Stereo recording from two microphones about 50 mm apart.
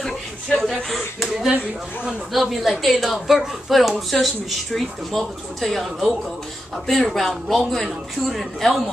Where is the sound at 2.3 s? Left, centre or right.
Centre.